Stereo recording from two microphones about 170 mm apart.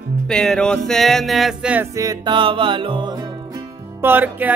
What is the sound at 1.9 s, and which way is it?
Music, 25° right (ahead or behind).